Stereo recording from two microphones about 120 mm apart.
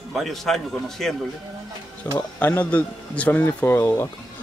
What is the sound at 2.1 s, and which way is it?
A man's voice, 20° left (ahead or behind).